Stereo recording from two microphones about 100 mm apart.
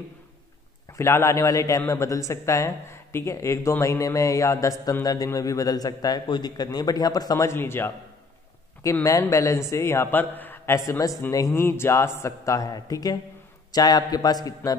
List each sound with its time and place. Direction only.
0.9 s speech: 25° left (ahead or behind)
9.0 s a man's voice: 35° left (ahead or behind)
11.0 s speech: 35° left (ahead or behind)